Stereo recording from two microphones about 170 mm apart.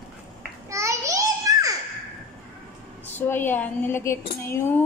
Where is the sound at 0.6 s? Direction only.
15° right (ahead or behind).